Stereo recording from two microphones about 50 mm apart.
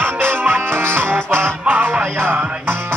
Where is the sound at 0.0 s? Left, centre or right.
Right.